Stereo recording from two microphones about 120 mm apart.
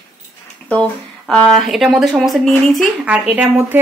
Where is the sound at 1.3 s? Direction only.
5° left (ahead or behind).